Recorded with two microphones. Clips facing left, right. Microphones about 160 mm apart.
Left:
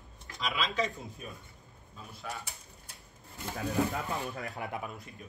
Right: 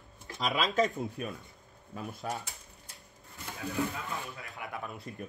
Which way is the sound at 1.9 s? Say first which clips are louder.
Right 10 dB; 75° right (ahead or behind).